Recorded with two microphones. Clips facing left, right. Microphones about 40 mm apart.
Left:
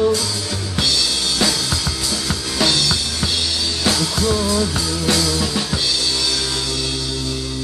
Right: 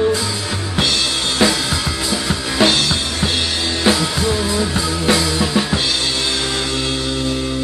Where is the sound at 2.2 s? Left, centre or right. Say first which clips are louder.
Right 4 dB; right.